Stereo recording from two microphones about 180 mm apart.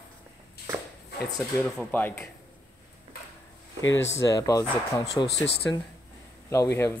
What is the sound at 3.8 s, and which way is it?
Speech, 90° left.